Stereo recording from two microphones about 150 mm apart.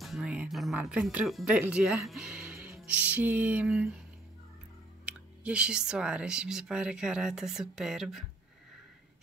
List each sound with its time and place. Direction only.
0.0 s speech: 5° right (ahead or behind)
5.0 s speech: 10° right (ahead or behind)